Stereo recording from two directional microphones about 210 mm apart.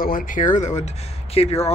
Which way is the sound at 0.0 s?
40° left (ahead or behind).